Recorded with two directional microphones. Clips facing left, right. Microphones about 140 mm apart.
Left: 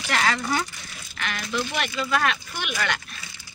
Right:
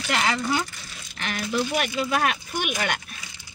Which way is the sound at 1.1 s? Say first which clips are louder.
Right 2 dB; 35° right (ahead or behind).